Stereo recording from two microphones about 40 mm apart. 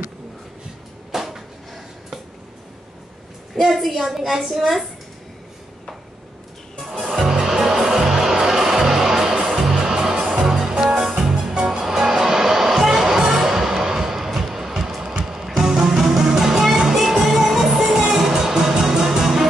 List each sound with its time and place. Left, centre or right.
1.1 s a sound: centre
3.5 s a woman's voice: centre
7.0 s music: right
7.2 s music: centre